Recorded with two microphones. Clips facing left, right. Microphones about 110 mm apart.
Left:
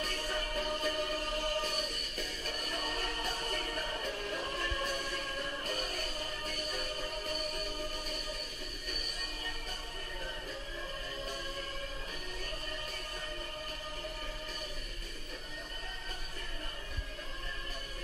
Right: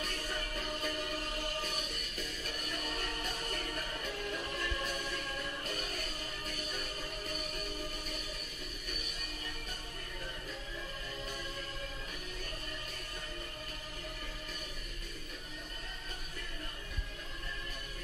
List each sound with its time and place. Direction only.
0.0 s music: 40° left (ahead or behind)